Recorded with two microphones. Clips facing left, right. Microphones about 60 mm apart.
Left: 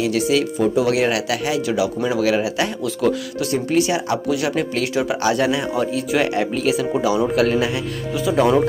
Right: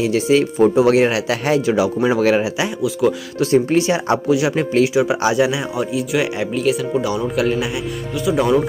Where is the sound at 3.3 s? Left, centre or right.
Right; by 7.3 s centre.